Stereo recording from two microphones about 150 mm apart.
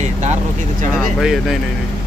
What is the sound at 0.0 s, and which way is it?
Vehicle, 50° right (ahead or behind).